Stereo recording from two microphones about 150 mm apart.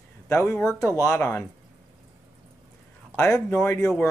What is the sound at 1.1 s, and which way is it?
Speech, 20° left (ahead or behind).